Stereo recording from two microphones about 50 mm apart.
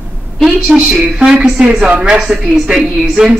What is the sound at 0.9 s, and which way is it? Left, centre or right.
A woman's voice, centre.